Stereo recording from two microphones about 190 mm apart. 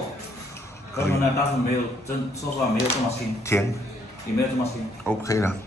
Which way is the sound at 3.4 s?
15° left (ahead or behind).